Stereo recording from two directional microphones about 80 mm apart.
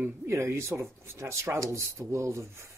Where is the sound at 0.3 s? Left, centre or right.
Right.